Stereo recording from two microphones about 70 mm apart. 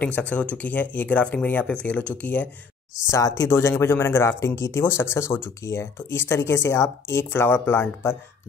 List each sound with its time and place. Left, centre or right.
0.0 s speech: left
3.1 s speech: left
3.4 s speech: left
7.2 s speech: left